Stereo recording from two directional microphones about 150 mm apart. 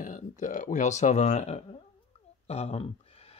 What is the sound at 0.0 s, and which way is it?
Speech, 60° left (ahead or behind).